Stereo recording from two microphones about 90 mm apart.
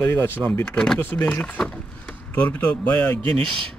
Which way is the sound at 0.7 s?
5° left (ahead or behind).